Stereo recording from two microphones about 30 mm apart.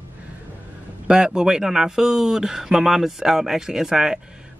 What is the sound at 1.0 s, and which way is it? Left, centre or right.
Speech, right.